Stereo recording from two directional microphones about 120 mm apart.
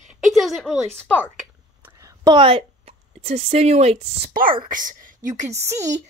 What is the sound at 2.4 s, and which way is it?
A woman's voice, 50° right (ahead or behind).